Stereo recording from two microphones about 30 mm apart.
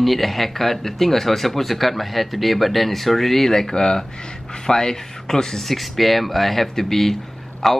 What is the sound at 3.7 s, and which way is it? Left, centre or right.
Speech, left.